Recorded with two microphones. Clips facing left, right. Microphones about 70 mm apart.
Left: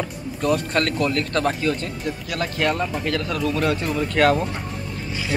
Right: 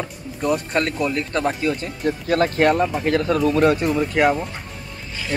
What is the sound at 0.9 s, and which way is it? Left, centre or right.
Speech, centre.